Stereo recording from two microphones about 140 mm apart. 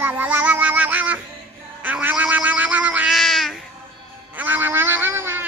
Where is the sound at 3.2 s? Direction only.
Centre (ahead or behind).